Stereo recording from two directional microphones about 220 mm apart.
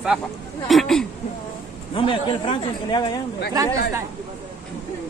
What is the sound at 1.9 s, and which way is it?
Speech, 25° left (ahead or behind).